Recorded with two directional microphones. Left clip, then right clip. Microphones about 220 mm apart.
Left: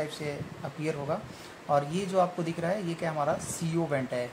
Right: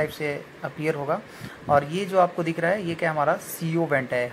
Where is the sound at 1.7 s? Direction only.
20° right (ahead or behind).